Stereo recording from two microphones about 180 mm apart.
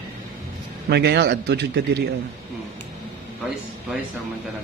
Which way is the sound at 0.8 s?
65° right (ahead or behind).